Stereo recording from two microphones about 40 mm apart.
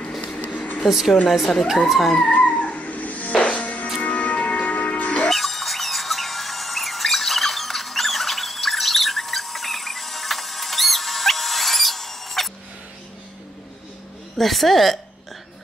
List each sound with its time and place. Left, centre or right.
0.2 s a sound: left
0.8 s speech: centre
2.3 s music: left
5.3 s music: centre
14.4 s hiccup: centre